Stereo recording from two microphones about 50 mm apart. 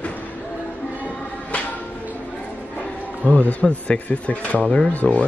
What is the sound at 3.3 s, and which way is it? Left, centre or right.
A man's voice, left.